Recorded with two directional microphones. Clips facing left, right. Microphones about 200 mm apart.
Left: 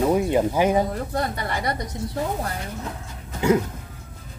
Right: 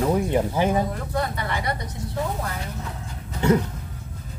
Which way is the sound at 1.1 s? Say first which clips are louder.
Even; 40° left (ahead or behind).